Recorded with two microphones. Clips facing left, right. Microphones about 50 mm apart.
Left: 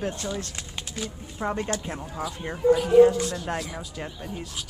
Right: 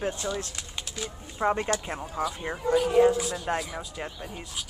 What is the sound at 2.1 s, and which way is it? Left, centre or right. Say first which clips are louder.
Speech: right 4 dB; centre.